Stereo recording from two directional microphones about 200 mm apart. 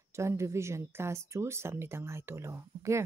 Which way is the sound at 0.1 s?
15° right (ahead or behind).